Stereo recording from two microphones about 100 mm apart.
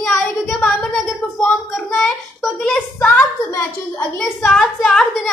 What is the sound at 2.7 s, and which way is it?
Speech, 15° left (ahead or behind).